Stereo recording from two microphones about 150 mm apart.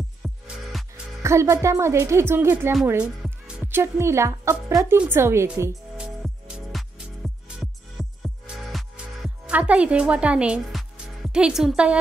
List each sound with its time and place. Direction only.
0.2 s music: centre (ahead or behind)
1.2 s speech: 20° right (ahead or behind)
5.9 s music: 5° right (ahead or behind)
8.0 s music: centre (ahead or behind)